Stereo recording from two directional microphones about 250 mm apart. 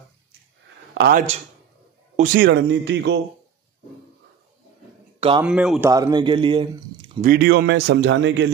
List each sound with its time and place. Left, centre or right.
0.9 s speech: right
5.4 s speech: centre
7.2 s speech: right